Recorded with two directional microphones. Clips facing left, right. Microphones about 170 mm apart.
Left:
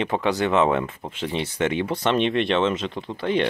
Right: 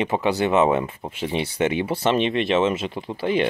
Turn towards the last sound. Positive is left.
turn(degrees=-5)  # may be behind; listen again after turning